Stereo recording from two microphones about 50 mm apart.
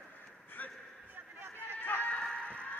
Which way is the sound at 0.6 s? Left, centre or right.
Left.